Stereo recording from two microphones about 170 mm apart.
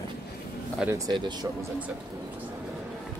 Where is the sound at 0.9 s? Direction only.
25° right (ahead or behind).